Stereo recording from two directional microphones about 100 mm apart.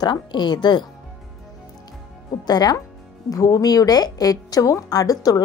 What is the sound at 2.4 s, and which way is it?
A woman's voice, 40° left (ahead or behind).